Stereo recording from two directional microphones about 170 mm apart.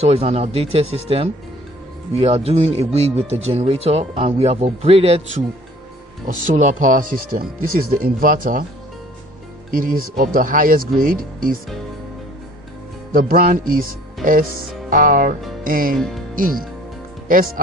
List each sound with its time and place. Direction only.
0.0 s speech: 35° right (ahead or behind)
6.2 s speech: 45° right (ahead or behind)
9.7 s speech: 55° right (ahead or behind)
13.1 s speech: 60° right (ahead or behind)